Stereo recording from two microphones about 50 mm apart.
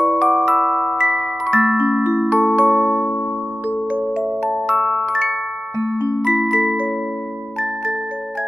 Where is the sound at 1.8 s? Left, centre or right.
Right.